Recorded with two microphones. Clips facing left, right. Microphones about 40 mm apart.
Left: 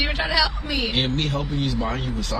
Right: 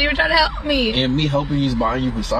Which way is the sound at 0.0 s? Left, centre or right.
Centre.